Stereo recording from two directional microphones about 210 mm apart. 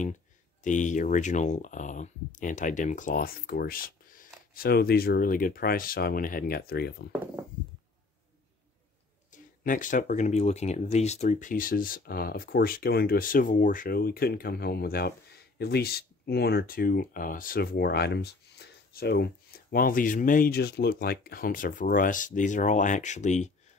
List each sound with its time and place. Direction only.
0.7 s speech: 35° left (ahead or behind)
9.3 s speech: 40° left (ahead or behind)